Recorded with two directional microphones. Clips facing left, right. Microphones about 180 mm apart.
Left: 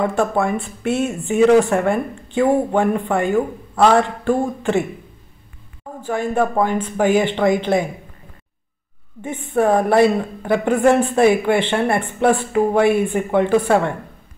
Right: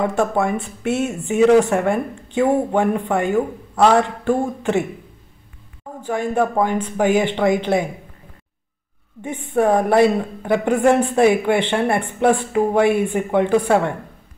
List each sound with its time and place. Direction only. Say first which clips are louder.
0.0 s a woman's voice: even; 15° right (ahead or behind)
6.0 s a woman's voice: even; 15° right (ahead or behind)
9.2 s a woman's voice: even; 15° right (ahead or behind)